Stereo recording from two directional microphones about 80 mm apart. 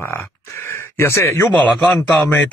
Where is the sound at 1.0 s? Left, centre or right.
Left.